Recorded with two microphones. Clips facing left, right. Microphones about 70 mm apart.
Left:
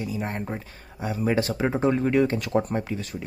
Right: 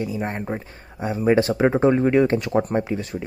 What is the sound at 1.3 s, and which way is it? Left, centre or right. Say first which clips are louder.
Speech: right 8 dB; right.